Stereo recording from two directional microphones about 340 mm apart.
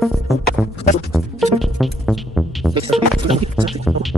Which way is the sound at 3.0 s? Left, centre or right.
Centre.